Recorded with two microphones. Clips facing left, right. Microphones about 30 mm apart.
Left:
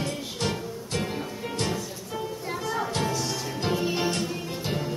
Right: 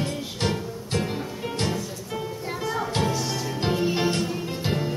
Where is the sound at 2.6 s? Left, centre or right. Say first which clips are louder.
Right 3 dB; centre.